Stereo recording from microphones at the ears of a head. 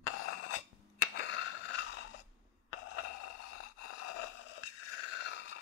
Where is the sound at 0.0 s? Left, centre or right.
Left.